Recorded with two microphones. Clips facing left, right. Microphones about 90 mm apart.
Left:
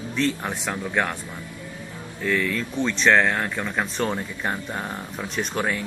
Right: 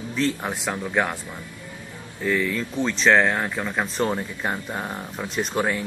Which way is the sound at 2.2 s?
10° right (ahead or behind).